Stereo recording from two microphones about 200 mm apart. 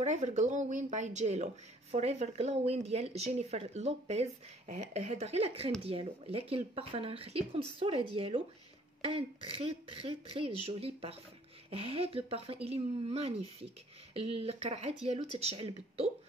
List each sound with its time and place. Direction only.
0.0 s speech: 35° right (ahead or behind)